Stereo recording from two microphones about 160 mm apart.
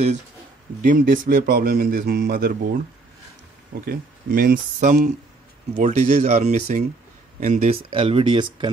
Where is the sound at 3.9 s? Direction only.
65° right (ahead or behind); by 7.8 s 50° right (ahead or behind).